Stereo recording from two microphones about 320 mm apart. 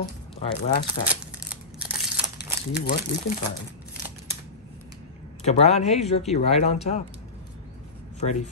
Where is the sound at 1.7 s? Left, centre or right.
Centre.